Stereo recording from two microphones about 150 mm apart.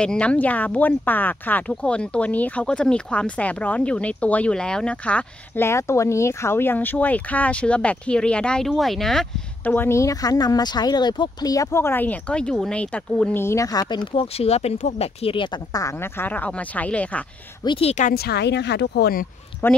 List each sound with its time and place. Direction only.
0.0 s speech: 5° left (ahead or behind)
9.8 s speech: 20° left (ahead or behind)
17.6 s speech: 40° left (ahead or behind)
18.0 s speech: 90° left
19.6 s speech: 15° left (ahead or behind)